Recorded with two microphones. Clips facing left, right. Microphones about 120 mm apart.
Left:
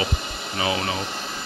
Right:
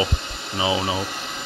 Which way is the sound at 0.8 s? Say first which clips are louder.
Right 2 dB; 10° right (ahead or behind).